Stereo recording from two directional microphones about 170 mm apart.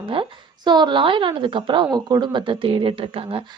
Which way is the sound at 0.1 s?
30° right (ahead or behind).